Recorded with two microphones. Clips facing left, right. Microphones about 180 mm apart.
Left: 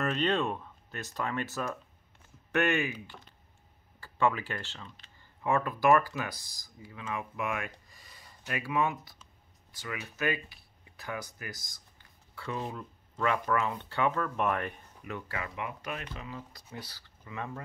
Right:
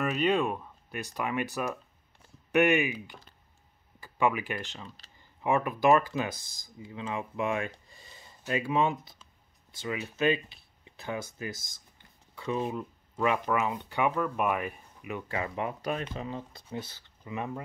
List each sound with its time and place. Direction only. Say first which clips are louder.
0.0 s speech: right 2 dB; 10° right (ahead or behind)
4.8 s speech: right 3 dB; 35° right (ahead or behind)
5.4 s speech: right 2 dB; 15° right (ahead or behind)
15.3 s speech: right 8 dB; 30° right (ahead or behind)